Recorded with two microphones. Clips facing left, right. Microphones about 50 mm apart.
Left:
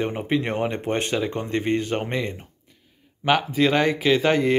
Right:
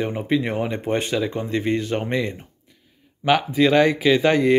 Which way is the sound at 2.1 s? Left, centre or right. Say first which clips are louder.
Right 3 dB; left.